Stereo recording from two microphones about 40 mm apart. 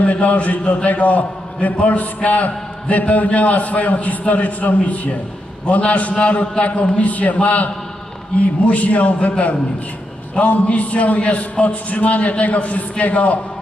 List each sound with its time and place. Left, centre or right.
0.0 s a man's voice: left
10.3 s a man's voice: left